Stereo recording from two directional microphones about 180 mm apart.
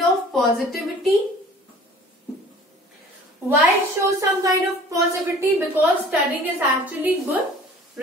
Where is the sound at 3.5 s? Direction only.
15° right (ahead or behind).